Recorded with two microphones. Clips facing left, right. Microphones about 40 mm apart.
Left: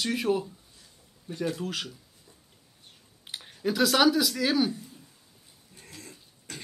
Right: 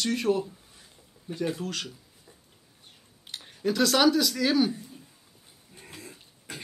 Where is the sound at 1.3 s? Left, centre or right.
Centre.